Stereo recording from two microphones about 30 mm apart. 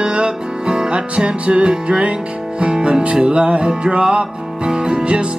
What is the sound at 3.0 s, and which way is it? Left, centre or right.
Music, right.